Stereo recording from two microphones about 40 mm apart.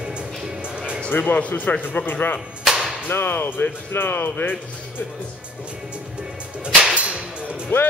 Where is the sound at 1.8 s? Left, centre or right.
Left.